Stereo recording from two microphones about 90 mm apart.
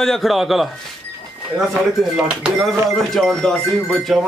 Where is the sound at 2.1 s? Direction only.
5° right (ahead or behind).